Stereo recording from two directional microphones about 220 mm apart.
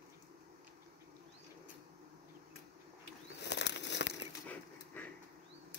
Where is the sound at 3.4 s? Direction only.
50° left (ahead or behind).